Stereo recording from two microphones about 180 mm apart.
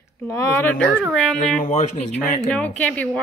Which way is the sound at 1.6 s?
40° left (ahead or behind).